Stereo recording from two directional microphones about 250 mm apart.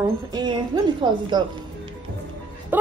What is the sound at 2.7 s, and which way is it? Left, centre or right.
Music, centre.